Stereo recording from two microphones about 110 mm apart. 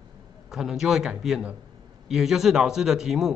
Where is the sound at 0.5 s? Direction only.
5° right (ahead or behind).